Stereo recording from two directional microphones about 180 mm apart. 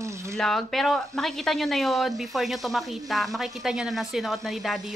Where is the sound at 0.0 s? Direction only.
15° right (ahead or behind).